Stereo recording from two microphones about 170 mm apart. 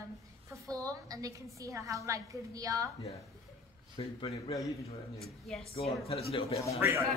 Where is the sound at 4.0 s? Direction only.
35° left (ahead or behind).